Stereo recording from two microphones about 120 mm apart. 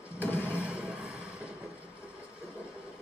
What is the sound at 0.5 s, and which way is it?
Music, 10° right (ahead or behind).